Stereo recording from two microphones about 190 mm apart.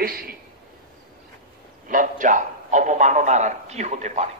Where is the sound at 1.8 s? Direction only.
45° right (ahead or behind).